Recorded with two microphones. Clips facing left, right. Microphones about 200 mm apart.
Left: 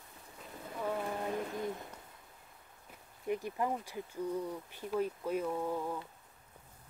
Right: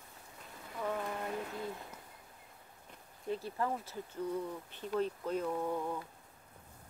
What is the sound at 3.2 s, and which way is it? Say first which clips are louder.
Speech: left 2 dB; 15° left (ahead or behind).